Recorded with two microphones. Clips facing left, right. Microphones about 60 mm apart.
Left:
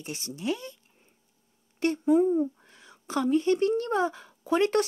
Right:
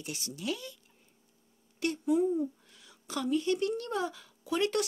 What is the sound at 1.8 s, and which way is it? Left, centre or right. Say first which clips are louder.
Speech: left 6 dB; left.